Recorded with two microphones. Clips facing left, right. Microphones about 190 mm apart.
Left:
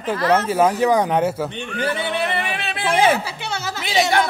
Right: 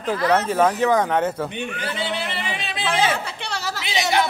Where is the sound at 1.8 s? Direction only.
60° left (ahead or behind).